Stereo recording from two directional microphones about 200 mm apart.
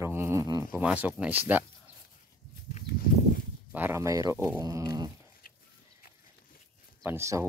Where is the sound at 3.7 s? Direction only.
10° right (ahead or behind).